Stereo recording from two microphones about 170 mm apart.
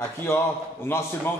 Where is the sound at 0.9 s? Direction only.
15° left (ahead or behind).